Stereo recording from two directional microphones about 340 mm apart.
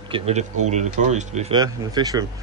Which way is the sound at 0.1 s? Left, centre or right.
Centre.